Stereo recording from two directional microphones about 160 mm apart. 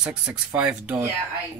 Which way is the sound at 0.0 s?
10° right (ahead or behind).